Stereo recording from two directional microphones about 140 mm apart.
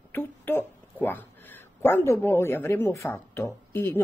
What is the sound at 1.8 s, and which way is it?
Speech, 15° left (ahead or behind).